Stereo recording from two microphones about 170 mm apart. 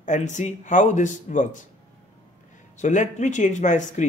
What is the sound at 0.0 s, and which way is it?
Speech, 45° left (ahead or behind).